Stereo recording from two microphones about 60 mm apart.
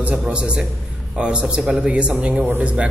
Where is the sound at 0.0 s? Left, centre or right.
Centre.